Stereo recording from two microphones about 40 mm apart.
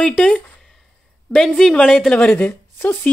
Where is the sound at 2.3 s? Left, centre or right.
Left.